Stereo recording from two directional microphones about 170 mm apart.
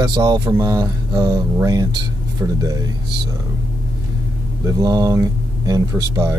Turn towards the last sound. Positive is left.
turn(degrees=-20)  # may be behind; listen again after turning